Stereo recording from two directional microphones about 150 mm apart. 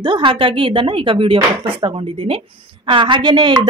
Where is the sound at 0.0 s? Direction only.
35° right (ahead or behind).